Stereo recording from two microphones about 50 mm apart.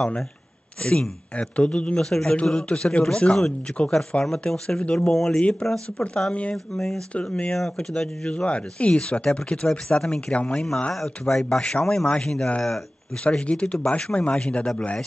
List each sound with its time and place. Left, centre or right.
0.8 s speech: left
2.0 s speech: centre
2.7 s speech: left
3.8 s speech: left
5.1 s speech: centre
5.4 s speech: centre
7.2 s speech: left
7.5 s speech: centre